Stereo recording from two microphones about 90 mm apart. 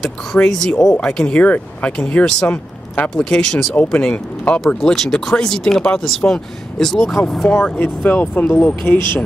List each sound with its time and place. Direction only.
0.0 s speech: 5° left (ahead or behind)
3.3 s speech: 5° left (ahead or behind); by 9.0 s 25° left (ahead or behind)